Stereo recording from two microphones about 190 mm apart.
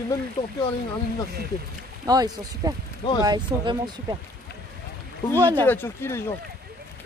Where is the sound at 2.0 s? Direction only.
20° right (ahead or behind).